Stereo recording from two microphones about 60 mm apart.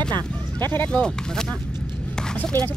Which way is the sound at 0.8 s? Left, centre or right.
Centre.